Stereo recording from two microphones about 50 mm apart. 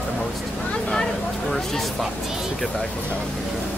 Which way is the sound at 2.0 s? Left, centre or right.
Centre.